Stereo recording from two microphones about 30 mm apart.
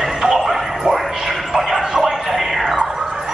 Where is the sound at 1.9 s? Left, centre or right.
Centre.